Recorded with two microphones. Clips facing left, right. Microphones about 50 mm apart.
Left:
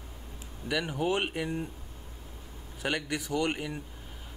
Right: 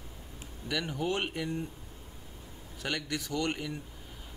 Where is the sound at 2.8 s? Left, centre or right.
Centre.